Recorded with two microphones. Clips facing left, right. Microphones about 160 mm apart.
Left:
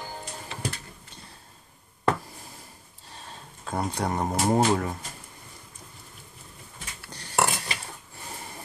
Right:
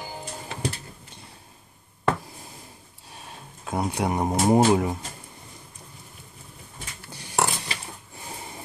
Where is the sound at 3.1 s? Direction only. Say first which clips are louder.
Right 1 dB; 10° right (ahead or behind).